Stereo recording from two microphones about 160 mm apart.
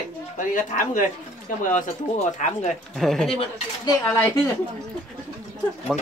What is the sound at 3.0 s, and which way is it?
Speech, 5° left (ahead or behind).